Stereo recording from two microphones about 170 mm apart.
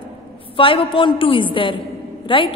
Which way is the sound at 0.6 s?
30° left (ahead or behind).